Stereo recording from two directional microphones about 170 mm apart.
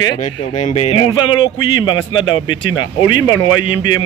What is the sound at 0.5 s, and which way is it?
A man's voice, 40° left (ahead or behind).